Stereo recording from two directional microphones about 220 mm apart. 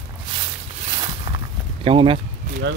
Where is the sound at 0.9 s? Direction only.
25° right (ahead or behind).